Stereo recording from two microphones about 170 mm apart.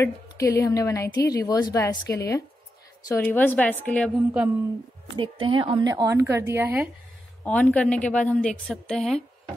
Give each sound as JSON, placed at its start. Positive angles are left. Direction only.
{"t": 0.0, "sound": "a woman's voice", "side_deg": 15}
{"t": 5.1, "sound": "a woman's voice", "side_deg": -30}
{"t": 7.4, "sound": "a woman's voice", "side_deg": 10}